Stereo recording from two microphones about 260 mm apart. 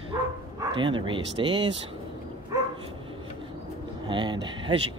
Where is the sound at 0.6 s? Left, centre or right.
Centre.